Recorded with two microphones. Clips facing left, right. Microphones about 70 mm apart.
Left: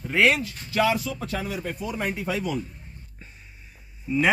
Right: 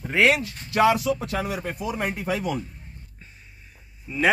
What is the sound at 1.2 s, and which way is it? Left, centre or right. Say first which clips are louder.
Speech: right 2 dB; right.